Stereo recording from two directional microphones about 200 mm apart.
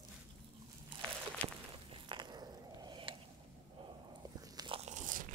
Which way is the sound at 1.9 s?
25° right (ahead or behind).